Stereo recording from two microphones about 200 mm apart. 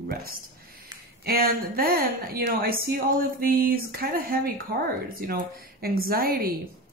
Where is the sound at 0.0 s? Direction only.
50° right (ahead or behind).